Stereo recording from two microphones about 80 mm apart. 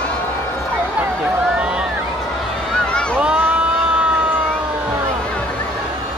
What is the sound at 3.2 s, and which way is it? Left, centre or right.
Crowd, centre.